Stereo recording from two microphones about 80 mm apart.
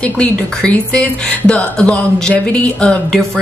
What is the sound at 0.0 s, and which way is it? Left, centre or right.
Speech, centre.